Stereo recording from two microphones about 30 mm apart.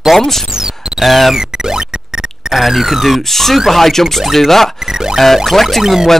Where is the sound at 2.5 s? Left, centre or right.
Centre.